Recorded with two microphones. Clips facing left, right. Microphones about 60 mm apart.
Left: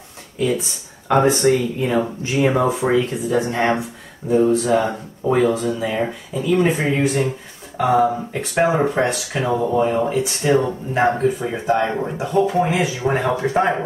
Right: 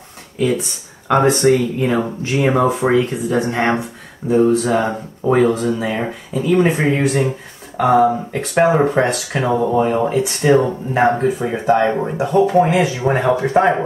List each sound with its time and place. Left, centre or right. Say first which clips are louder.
0.4 s speech: right 2 dB; centre